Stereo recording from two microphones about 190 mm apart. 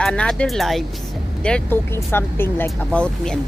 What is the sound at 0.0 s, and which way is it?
Speech, 5° left (ahead or behind).